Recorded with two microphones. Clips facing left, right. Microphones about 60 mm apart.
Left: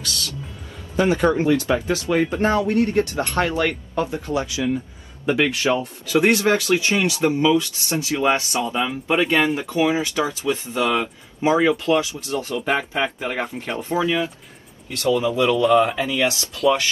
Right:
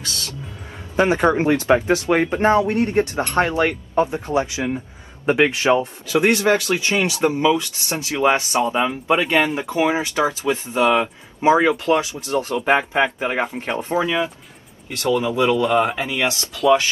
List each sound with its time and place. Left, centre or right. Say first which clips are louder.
0.9 s speech: right 2 dB; right
15.5 s speech: left 4 dB; right
15.8 s speech: left 1 dB; right